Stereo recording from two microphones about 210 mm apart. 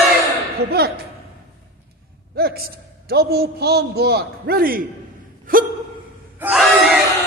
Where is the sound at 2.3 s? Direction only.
45° right (ahead or behind).